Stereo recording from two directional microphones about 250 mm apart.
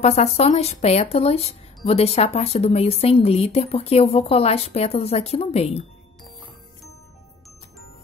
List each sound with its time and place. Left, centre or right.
0.0 s speech: left